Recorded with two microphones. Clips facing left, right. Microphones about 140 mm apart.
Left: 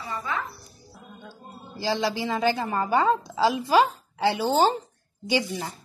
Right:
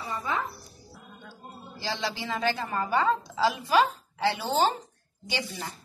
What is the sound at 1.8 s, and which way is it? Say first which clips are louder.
A woman's voice: left 7 dB; 35° left (ahead or behind).